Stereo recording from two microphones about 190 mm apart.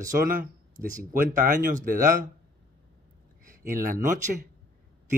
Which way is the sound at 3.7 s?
45° right (ahead or behind).